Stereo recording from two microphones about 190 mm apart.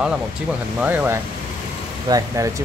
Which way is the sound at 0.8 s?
10° right (ahead or behind).